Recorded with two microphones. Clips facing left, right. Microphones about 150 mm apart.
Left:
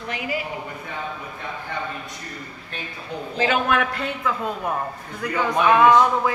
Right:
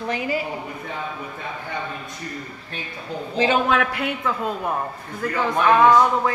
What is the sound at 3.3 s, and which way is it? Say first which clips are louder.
Speech: right 2 dB; 25° right (ahead or behind).